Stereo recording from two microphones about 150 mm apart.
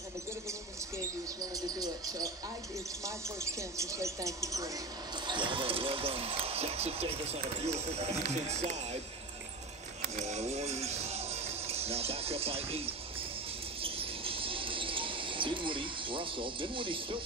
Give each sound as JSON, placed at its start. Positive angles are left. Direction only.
{"t": 0.5, "sound": "bird", "side_deg": -20}
{"t": 3.0, "sound": "speech", "side_deg": -20}
{"t": 10.2, "sound": "basketball bounce", "side_deg": -45}
{"t": 13.7, "sound": "a sound", "side_deg": -40}